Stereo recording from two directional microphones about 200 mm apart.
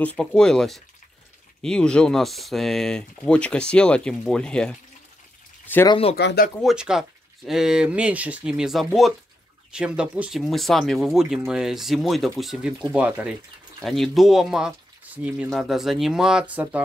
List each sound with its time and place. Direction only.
0.0 s speech: 5° left (ahead or behind)
5.9 s speech: 30° left (ahead or behind)
6.1 s speech: 50° left (ahead or behind)
6.6 s speech: 5° right (ahead or behind)